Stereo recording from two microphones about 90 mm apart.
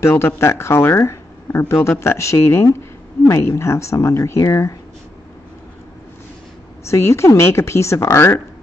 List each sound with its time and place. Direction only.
0.0 s speech: 30° left (ahead or behind)
6.9 s speech: 30° left (ahead or behind)